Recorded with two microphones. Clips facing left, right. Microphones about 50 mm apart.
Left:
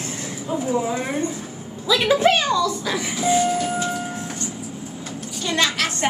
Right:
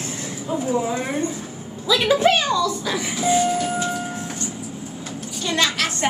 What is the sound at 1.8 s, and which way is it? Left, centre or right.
Speech, left.